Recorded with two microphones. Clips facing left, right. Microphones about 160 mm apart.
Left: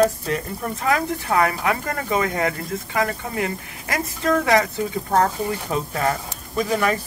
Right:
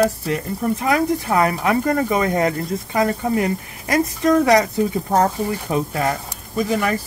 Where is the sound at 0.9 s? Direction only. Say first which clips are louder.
Right 2 dB; 25° right (ahead or behind).